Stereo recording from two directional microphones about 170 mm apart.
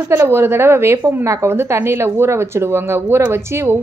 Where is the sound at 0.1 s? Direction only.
15° right (ahead or behind).